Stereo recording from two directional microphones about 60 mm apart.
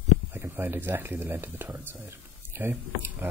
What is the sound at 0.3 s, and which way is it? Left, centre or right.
Speech, right.